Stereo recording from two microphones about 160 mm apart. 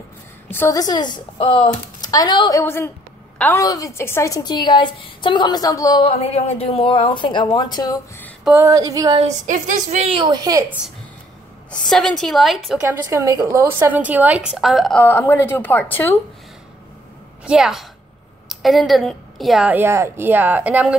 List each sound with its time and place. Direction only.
0.5 s a woman's voice: 15° left (ahead or behind)
2.6 s a woman's voice: 15° left (ahead or behind)
3.6 s a woman's voice: 20° left (ahead or behind)
6.0 s a woman's voice: 40° left (ahead or behind)
8.6 s a sound: 20° right (ahead or behind)
9.5 s a woman's voice: 50° right (ahead or behind); by 10.6 s 25° right (ahead or behind)
11.7 s a woman's voice: centre (ahead or behind)
12.8 s a woman's voice: 20° right (ahead or behind); by 15.0 s centre (ahead or behind)
15.0 s speech: 15° left (ahead or behind)
17.5 s a woman's voice: 5° right (ahead or behind)